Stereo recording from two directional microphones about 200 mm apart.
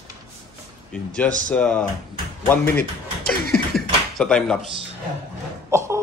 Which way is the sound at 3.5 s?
Centre (ahead or behind).